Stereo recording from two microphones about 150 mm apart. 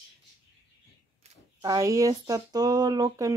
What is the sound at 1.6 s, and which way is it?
Speech, 25° right (ahead or behind).